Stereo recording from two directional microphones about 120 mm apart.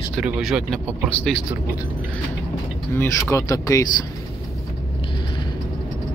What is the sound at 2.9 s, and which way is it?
Speech, 20° left (ahead or behind).